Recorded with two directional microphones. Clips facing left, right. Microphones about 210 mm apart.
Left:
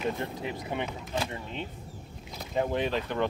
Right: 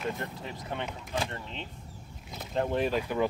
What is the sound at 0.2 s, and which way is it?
Speech, 15° left (ahead or behind).